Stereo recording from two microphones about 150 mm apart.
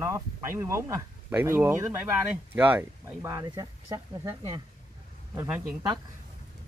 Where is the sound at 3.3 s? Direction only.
25° right (ahead or behind).